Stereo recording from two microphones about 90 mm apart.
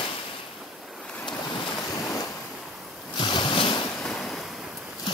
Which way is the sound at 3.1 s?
65° left (ahead or behind).